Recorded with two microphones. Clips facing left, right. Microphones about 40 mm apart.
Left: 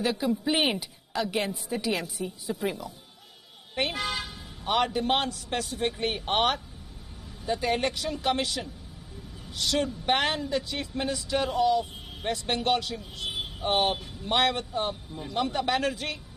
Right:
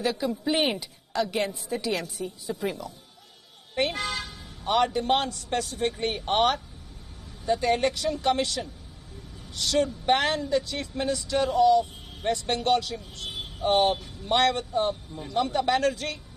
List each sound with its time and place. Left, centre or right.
0.0 s speech: centre